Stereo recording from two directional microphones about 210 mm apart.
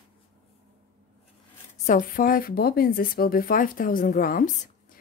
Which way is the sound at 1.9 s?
40° left (ahead or behind).